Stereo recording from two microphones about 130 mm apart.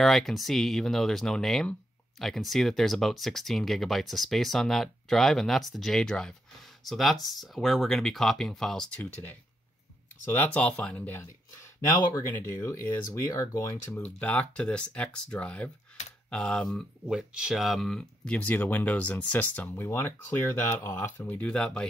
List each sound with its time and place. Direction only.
0.0 s speech: centre (ahead or behind); by 14.0 s 25° left (ahead or behind)
14.0 s speech: 10° left (ahead or behind)